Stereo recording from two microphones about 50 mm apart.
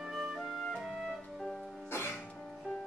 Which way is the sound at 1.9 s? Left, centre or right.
Left.